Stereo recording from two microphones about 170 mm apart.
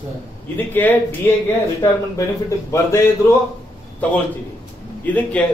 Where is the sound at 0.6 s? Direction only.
10° left (ahead or behind).